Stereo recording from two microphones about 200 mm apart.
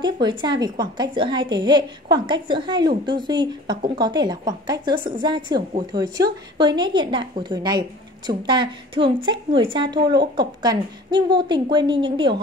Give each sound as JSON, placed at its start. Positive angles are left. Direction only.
{"t": 0.0, "sound": "a woman's voice", "side_deg": -20}